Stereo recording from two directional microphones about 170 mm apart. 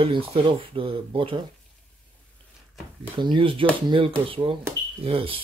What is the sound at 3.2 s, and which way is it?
Speech, 30° right (ahead or behind).